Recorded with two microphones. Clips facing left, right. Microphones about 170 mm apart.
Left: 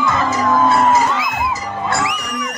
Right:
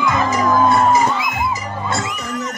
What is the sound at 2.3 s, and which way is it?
Music, 70° left (ahead or behind).